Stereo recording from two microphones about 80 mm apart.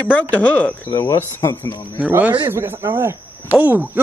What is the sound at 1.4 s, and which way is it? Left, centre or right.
Speech, left.